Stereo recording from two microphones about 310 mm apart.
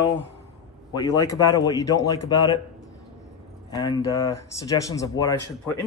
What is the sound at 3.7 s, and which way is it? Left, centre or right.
Speech, centre.